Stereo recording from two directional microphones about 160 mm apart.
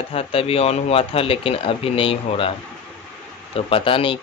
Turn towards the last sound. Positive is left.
turn(degrees=35)  # may be behind; listen again after turning